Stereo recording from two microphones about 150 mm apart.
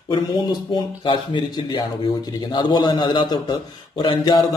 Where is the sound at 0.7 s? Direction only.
30° left (ahead or behind).